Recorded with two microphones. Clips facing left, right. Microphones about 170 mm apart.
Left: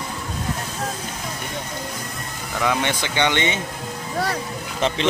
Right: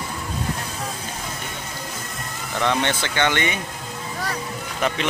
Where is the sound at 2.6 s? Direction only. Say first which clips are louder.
Even; 15° left (ahead or behind).